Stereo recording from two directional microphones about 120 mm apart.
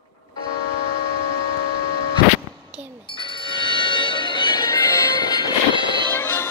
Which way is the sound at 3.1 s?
40° left (ahead or behind).